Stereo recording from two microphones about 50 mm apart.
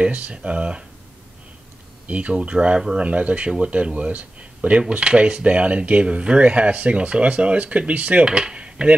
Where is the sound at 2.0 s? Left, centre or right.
Right.